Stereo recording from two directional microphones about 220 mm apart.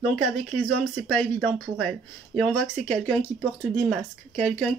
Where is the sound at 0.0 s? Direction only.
Centre (ahead or behind).